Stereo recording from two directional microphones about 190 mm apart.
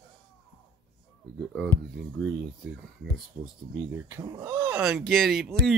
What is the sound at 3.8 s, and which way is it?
Speech, 10° right (ahead or behind).